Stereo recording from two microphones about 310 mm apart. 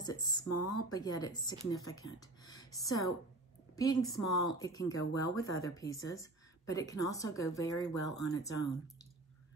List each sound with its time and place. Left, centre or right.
0.0 s speech: centre
0.5 s speech: left
0.8 s speech: centre